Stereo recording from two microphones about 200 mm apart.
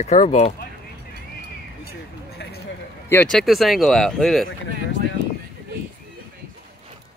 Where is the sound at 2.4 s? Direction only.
60° left (ahead or behind).